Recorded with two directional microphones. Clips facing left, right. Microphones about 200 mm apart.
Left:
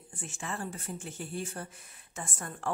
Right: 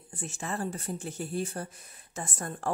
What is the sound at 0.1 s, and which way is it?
Speech, 40° right (ahead or behind).